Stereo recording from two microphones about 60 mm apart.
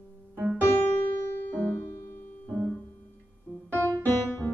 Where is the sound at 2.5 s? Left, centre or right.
Centre.